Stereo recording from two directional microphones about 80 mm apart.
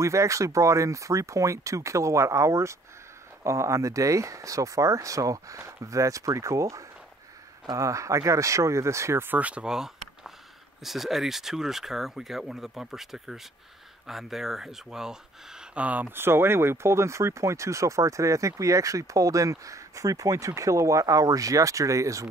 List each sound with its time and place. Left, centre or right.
0.0 s speech: right
9.3 s speech: centre
15.7 s speech: centre; by 22.3 s right